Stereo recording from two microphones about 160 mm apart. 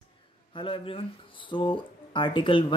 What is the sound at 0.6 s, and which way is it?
Speech, 35° left (ahead or behind).